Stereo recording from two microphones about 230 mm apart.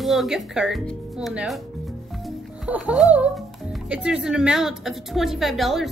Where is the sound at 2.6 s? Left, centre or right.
Centre.